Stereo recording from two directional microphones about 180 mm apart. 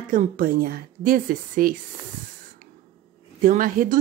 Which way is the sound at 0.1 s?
50° right (ahead or behind).